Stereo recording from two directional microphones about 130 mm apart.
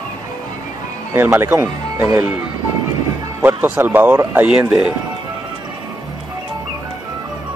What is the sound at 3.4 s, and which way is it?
Speech, 20° right (ahead or behind).